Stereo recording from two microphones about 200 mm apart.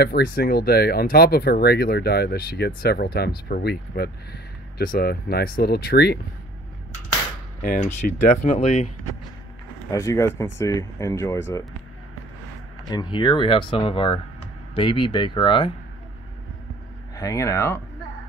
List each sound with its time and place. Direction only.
0.0 s speech: 50° left (ahead or behind)
7.6 s speech: 40° left (ahead or behind)
9.8 s speech: 15° left (ahead or behind)
12.9 s speech: 25° left (ahead or behind)
17.1 s speech: 15° left (ahead or behind)